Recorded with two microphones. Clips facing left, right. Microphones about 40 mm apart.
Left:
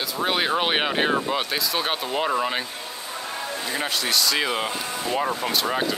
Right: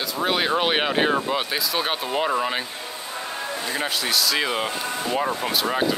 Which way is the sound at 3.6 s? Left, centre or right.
Centre.